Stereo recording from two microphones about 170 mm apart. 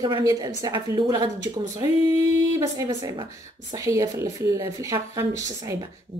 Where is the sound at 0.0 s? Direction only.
20° right (ahead or behind).